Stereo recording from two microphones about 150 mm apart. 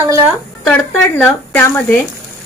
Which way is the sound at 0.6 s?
10° left (ahead or behind).